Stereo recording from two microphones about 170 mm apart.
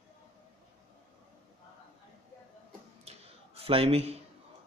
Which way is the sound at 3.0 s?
35° right (ahead or behind).